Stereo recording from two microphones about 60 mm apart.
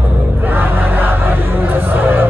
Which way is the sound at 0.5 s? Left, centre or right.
Right.